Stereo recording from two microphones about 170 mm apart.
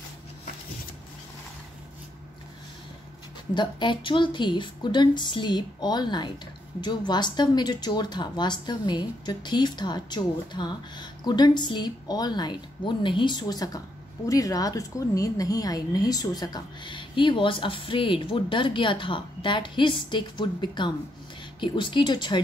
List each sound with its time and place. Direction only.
3.5 s speech: 30° left (ahead or behind)